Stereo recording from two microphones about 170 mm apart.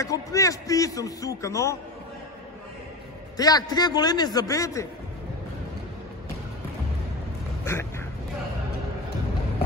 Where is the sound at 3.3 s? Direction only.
25° left (ahead or behind).